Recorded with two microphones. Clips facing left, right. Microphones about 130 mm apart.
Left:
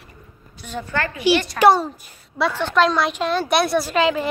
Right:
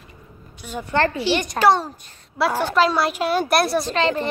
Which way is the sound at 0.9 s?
30° right (ahead or behind).